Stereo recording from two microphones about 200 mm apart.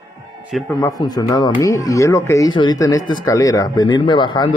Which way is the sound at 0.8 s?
15° left (ahead or behind).